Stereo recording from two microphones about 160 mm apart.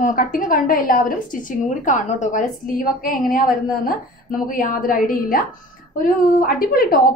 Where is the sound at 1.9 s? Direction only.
50° left (ahead or behind).